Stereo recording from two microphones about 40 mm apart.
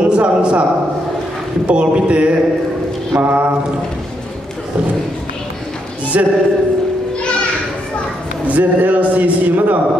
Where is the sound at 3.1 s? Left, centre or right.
Right.